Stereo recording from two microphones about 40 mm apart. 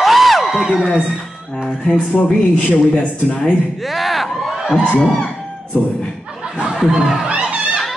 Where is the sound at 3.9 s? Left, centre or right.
Centre.